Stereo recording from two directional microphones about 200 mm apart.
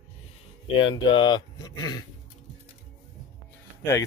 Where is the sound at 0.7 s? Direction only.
25° left (ahead or behind).